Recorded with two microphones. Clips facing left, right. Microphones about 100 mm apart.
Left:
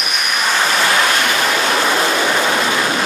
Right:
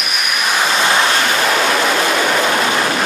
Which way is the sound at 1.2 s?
40° right (ahead or behind).